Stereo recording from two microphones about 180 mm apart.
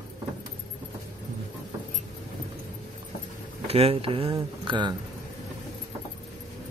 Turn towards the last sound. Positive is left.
turn(degrees=-25)  # may be behind; listen again after turning